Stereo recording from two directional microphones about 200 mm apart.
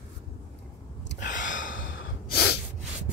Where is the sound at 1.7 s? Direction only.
70° left (ahead or behind).